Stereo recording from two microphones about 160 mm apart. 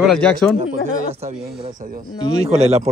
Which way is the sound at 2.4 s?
40° right (ahead or behind).